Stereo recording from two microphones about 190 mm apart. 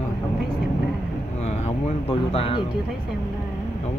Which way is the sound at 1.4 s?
35° left (ahead or behind).